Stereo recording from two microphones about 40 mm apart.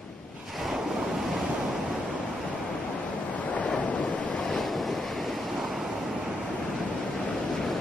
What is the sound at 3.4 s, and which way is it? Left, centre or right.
Waves, left.